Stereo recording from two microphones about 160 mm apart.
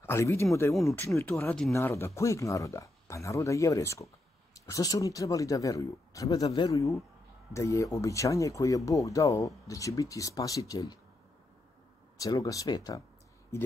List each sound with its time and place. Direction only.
0.0 s speech: 15° left (ahead or behind)
12.2 s speech: 20° left (ahead or behind)